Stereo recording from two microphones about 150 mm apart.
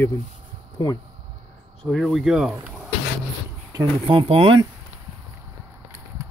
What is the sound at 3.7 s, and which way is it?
Speech, 35° right (ahead or behind).